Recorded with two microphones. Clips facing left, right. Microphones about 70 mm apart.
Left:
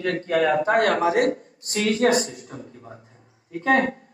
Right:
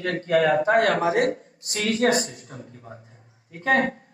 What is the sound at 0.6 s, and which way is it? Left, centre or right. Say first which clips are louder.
Speech: even; left.